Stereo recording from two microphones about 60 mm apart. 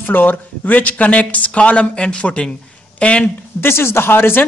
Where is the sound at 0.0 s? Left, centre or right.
Left.